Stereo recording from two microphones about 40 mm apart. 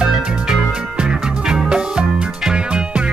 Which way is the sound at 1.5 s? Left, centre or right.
Right.